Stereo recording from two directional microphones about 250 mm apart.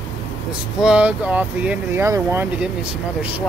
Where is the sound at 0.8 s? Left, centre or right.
Centre.